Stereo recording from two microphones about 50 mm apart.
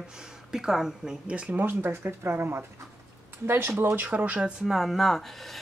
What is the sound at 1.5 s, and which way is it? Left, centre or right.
Speech, right.